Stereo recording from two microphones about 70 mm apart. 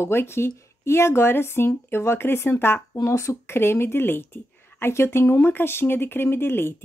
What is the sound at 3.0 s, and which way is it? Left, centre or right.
Speech, left.